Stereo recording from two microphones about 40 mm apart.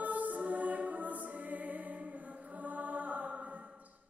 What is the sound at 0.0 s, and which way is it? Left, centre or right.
Music, right.